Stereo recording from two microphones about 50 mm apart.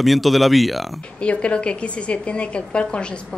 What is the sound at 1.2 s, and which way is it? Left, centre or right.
A woman's voice, left.